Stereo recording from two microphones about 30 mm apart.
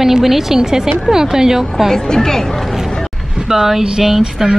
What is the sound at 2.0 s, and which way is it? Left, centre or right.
Speech, left.